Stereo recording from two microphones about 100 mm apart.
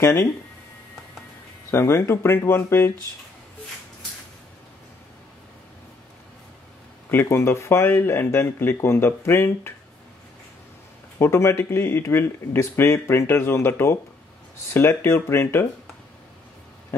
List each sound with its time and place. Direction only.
0.0 s speech: 30° left (ahead or behind)
1.7 s speech: 25° left (ahead or behind)
7.1 s speech: 20° left (ahead or behind)
11.1 s speech: 25° left (ahead or behind)